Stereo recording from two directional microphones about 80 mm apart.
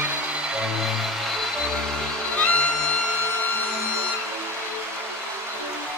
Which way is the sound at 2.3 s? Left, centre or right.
Centre.